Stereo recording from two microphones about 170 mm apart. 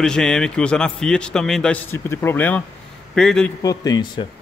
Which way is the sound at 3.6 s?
20° left (ahead or behind).